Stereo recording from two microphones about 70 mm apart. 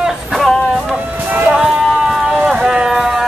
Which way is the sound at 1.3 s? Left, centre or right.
Right.